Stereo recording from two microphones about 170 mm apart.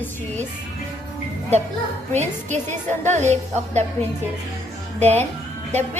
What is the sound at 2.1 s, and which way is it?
A woman's voice, 40° right (ahead or behind).